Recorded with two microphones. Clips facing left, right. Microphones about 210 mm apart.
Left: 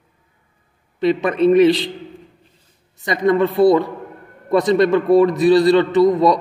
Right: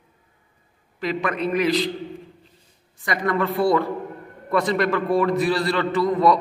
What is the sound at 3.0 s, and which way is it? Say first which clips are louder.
A man's voice: left 7 dB; 20° left (ahead or behind).